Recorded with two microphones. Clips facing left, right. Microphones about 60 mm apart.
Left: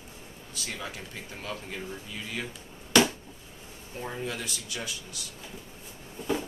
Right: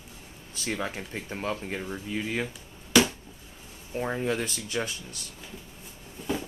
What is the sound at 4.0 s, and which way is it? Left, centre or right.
Speech, right.